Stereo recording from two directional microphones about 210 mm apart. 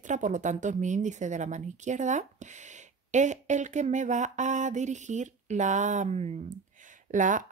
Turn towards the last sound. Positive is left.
turn(degrees=-40)  # may be behind; listen again after turning